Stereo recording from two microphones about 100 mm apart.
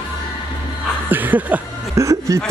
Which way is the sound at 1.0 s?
20° right (ahead or behind).